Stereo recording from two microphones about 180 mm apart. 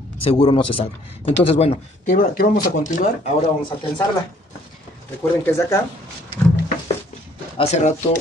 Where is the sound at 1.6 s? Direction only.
35° left (ahead or behind).